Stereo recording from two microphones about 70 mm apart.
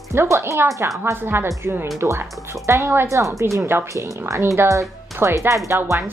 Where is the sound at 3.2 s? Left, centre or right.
Right.